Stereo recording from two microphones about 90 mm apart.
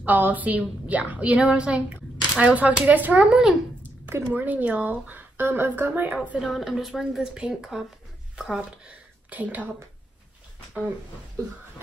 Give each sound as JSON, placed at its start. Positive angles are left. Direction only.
{"t": 0.0, "sound": "speech", "side_deg": -20}
{"t": 3.8, "sound": "a sound", "side_deg": -25}
{"t": 4.3, "sound": "speech", "side_deg": -20}